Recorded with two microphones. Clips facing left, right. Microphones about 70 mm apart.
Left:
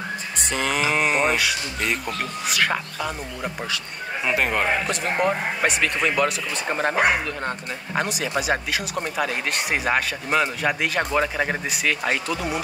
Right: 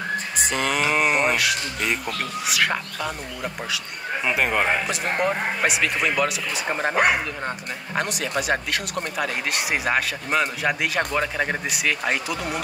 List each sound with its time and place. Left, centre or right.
0.4 s speech: centre